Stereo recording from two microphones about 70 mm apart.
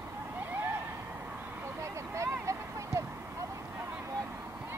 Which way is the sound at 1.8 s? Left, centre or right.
Right.